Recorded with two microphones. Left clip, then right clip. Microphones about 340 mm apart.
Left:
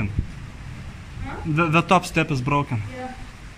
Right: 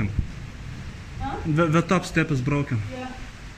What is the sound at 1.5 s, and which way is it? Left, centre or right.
A man's voice, centre.